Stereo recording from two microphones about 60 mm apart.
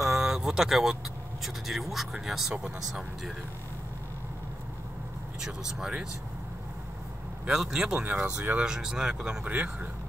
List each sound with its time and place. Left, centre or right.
0.0 s a sound: centre
1.4 s speech: centre
5.7 s speech: centre
7.4 s speech: centre
8.0 s speech: right
9.5 s speech: right